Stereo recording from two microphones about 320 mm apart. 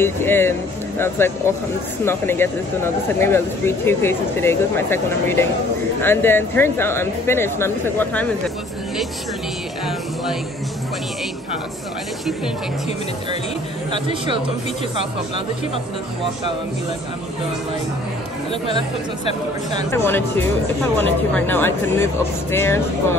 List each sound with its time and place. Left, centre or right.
0.0 s speech: centre
13.9 s speech: centre
19.9 s speech: centre